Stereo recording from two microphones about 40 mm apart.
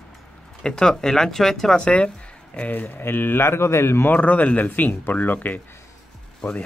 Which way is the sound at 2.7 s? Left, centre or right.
Left.